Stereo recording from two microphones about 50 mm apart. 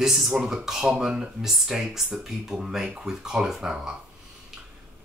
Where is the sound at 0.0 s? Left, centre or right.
Centre.